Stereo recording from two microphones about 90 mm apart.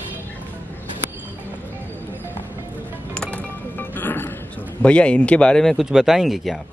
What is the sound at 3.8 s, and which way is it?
Music, 20° left (ahead or behind).